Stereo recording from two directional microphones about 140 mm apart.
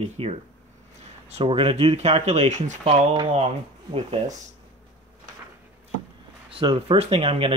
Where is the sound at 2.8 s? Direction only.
35° right (ahead or behind).